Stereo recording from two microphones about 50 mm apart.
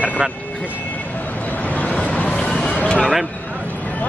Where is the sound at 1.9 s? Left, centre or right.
Left.